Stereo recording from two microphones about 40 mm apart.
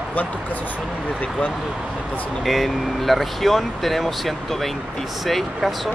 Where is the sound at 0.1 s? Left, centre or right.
Left.